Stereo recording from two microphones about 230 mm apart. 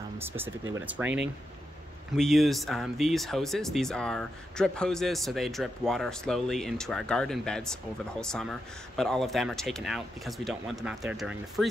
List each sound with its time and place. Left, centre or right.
0.7 s speech: centre